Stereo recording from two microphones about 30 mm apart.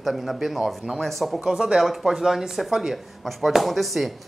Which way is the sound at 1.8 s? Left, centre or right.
Centre.